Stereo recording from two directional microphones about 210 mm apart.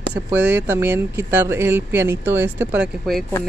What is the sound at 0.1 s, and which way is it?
Speech, 5° right (ahead or behind).